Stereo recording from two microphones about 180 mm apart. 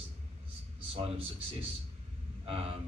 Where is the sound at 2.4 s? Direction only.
30° right (ahead or behind).